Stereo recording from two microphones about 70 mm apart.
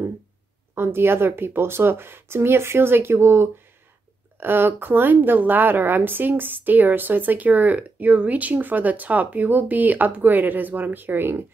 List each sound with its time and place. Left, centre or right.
0.7 s a woman's voice: right